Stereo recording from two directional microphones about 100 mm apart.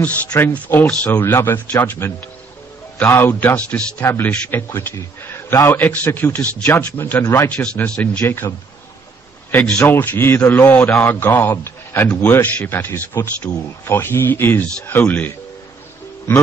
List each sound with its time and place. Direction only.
0.3 s a man's voice: 25° left (ahead or behind)
9.7 s a man's voice: 20° left (ahead or behind)